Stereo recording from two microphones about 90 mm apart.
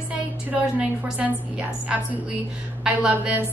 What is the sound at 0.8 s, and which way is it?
A woman's voice, 15° right (ahead or behind).